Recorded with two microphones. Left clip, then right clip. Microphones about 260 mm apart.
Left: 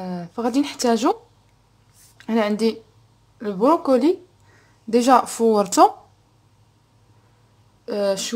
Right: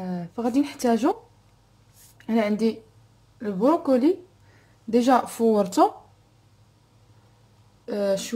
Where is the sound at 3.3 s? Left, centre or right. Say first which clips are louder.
Left 4 dB; left.